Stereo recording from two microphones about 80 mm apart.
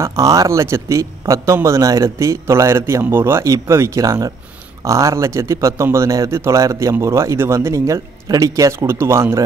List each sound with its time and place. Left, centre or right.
0.0 s a man's voice: right